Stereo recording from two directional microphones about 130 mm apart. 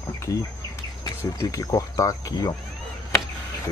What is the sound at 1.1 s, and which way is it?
Speech, 25° left (ahead or behind).